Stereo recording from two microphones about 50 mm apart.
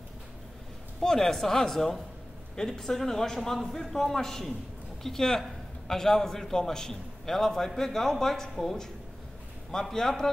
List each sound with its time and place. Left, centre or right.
1.0 s a man's voice: centre